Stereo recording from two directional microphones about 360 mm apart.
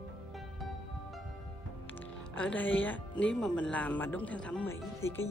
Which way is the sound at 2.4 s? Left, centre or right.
Centre.